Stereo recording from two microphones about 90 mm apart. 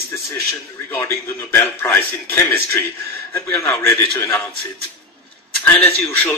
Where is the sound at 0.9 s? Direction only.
25° left (ahead or behind).